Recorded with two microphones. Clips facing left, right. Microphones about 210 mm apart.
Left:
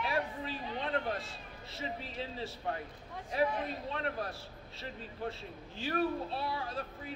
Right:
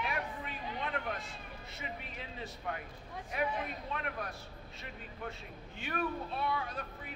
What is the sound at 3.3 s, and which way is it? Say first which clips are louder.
A man's voice: left 4 dB; 30° left (ahead or behind).